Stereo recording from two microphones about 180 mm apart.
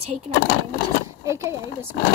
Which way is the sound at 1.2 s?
15° right (ahead or behind).